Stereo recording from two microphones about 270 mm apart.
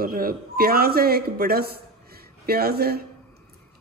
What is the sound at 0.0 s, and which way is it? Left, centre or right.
Speech, right.